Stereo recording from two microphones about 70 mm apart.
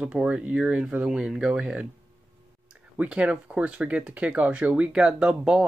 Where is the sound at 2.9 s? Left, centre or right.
Centre.